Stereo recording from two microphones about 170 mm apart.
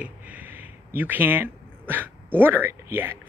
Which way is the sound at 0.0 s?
10° right (ahead or behind).